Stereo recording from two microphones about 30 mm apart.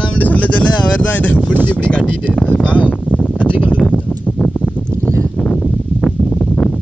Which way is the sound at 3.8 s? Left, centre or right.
Left.